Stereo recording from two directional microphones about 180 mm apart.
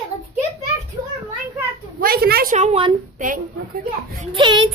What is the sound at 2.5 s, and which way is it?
Speech, 40° right (ahead or behind).